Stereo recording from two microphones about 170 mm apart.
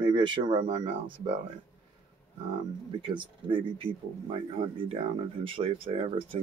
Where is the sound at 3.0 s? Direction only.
30° right (ahead or behind).